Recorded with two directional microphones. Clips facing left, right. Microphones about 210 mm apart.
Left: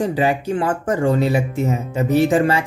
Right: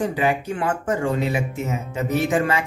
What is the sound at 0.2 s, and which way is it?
Speech, 35° left (ahead or behind).